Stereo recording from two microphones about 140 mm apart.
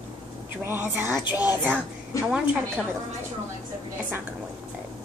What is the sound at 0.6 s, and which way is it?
Speech, 15° right (ahead or behind).